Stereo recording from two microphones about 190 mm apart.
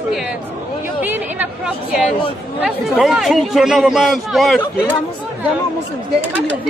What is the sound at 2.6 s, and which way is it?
Speech, centre (ahead or behind).